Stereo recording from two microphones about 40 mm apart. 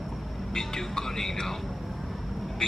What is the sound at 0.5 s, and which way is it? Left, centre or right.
Music, centre.